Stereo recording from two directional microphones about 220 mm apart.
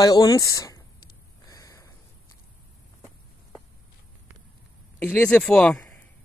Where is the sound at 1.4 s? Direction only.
15° left (ahead or behind).